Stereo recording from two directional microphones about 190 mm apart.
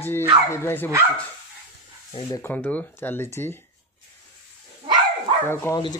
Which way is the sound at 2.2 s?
15° left (ahead or behind).